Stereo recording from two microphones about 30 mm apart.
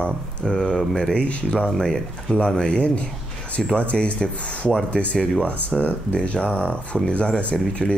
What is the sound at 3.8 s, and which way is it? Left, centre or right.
Speech, left.